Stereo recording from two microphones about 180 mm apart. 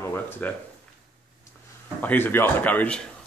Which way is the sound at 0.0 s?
10° left (ahead or behind).